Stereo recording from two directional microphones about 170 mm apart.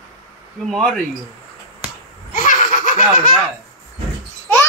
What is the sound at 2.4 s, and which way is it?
Laughter, 50° left (ahead or behind).